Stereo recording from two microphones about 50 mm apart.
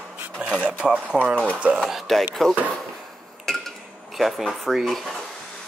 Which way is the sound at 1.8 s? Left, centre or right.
Centre.